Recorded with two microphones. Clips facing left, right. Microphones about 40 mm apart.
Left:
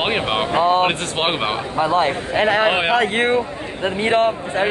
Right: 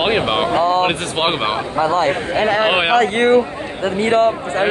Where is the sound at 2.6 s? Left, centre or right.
Right.